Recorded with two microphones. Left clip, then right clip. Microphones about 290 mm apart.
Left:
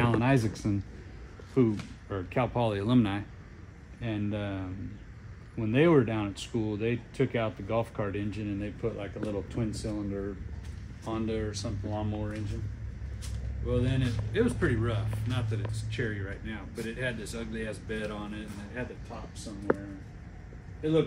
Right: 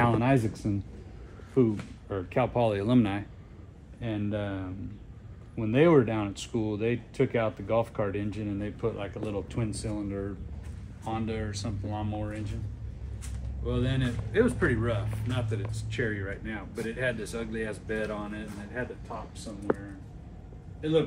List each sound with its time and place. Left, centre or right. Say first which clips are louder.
0.0 s a sound: right 2 dB; centre
1.5 s speech: right 1 dB; centre
8.8 s speech: right 2 dB; right
11.1 s speech: left 1 dB; right
13.7 s speech: even; centre
19.7 s speech: left 1 dB; centre